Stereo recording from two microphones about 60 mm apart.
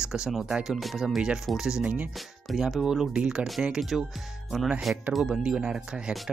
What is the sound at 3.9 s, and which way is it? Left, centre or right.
Speech, centre.